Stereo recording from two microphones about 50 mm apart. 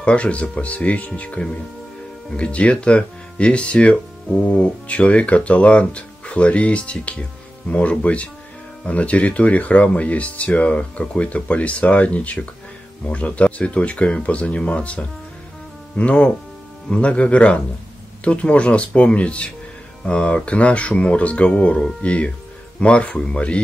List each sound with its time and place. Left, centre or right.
0.0 s speech: left